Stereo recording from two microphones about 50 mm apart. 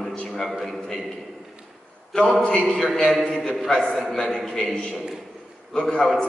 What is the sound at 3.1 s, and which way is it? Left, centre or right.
A man's voice, centre.